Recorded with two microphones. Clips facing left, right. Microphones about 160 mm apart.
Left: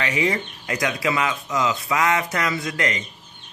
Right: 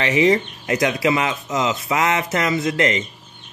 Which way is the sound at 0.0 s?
25° right (ahead or behind).